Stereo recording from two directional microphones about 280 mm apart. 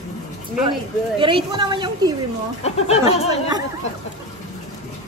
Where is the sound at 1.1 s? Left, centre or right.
Centre.